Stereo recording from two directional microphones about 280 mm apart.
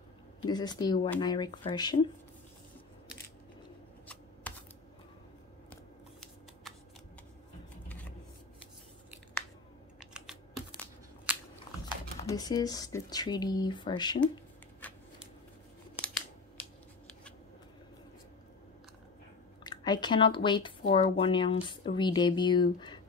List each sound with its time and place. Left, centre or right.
0.4 s speech: centre
4.1 s typing: centre
9.9 s typing: centre
12.2 s speech: centre
14.8 s shuffling cards: centre
19.6 s speech: centre